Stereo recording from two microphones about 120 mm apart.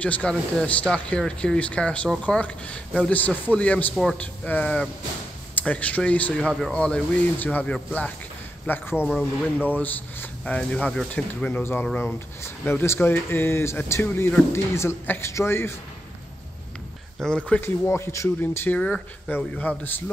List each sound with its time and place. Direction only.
0.0 s a man's voice: 10° left (ahead or behind)
4.2 s speech: 15° left (ahead or behind)
8.9 s a man's voice: 5° right (ahead or behind)
9.7 s speech: 15° left (ahead or behind)
17.2 s speech: 10° left (ahead or behind)
17.6 s speech: 20° left (ahead or behind)